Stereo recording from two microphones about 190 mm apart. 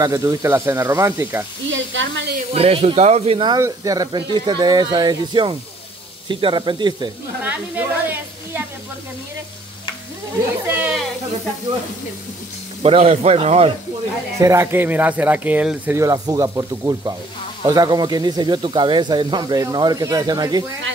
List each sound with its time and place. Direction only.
0.0 s speech: 15° right (ahead or behind)
1.7 s sizzle: 75° right (ahead or behind)
2.5 s speech: 30° right (ahead or behind)
7.4 s a sound: 10° right (ahead or behind)
10.7 s speech: 10° right (ahead or behind)
12.8 s speech: 35° right (ahead or behind)
14.4 s speech: 15° right (ahead or behind)